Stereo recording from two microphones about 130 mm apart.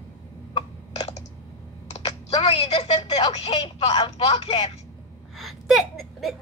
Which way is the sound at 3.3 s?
55° left (ahead or behind).